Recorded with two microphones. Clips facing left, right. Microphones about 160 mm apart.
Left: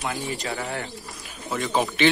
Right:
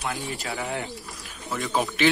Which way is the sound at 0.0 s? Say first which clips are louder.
Left 2 dB; centre (ahead or behind).